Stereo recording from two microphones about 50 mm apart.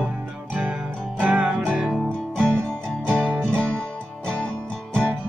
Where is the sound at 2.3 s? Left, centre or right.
Left.